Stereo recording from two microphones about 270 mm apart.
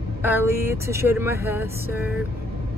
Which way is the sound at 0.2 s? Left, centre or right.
Centre.